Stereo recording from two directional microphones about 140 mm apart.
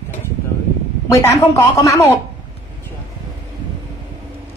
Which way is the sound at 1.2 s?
20° left (ahead or behind).